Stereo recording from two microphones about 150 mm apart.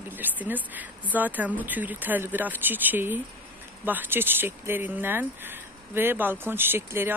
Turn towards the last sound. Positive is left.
turn(degrees=-15)  # may be behind; listen again after turning